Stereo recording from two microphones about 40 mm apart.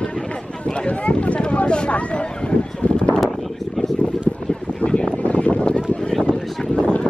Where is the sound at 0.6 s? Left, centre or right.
Left.